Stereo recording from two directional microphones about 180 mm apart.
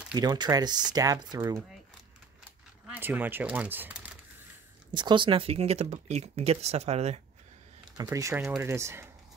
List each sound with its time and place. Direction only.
0.1 s speech: 25° right (ahead or behind)
2.9 s speech: 10° right (ahead or behind)
4.9 s speech: 25° right (ahead or behind)
8.0 s speech: 15° right (ahead or behind)